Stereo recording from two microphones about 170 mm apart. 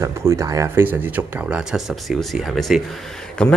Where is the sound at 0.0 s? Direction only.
15° right (ahead or behind).